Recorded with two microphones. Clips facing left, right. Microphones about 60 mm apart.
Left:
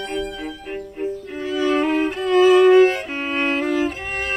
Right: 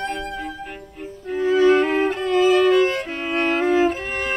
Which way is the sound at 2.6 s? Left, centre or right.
Centre.